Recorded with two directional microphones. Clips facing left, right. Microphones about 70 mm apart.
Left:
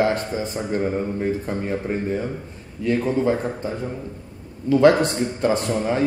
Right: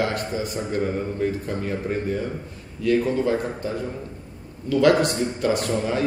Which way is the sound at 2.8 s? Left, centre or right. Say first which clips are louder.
Even; left.